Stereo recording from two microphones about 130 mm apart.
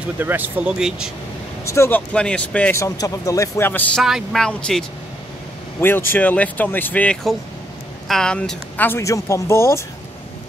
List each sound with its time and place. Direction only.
0.2 s speech: 15° right (ahead or behind)
1.6 s speech: 20° left (ahead or behind)
2.8 s speech: 25° left (ahead or behind)
4.0 s speech: centre (ahead or behind); by 9.8 s 20° left (ahead or behind)